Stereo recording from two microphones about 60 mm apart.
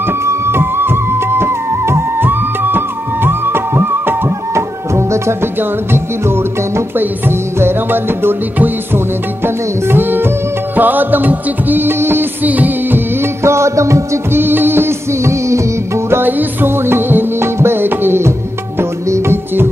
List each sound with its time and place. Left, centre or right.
0.2 s music: right
12.4 s music: right
13.2 s music: right
14.3 s music: right
16.1 s music: right
19.0 s music: right